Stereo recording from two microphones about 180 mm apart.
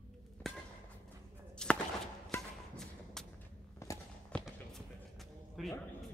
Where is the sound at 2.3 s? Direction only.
5° left (ahead or behind).